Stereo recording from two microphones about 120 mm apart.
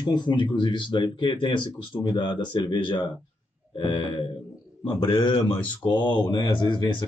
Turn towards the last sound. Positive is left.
turn(degrees=40)  # may be behind; listen again after turning